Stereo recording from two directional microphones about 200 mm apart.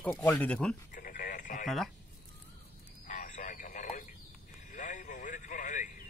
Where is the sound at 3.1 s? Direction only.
40° left (ahead or behind).